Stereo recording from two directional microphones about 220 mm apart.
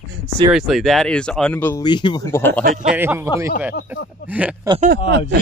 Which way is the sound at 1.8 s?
20° left (ahead or behind).